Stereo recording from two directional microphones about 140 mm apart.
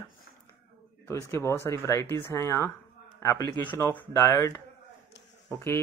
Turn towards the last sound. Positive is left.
turn(degrees=15)  # may be behind; listen again after turning